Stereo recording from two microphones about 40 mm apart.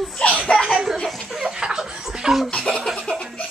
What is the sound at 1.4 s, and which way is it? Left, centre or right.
Laughter, centre.